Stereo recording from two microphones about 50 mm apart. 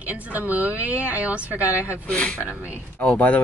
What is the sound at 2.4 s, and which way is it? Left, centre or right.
Speech, right.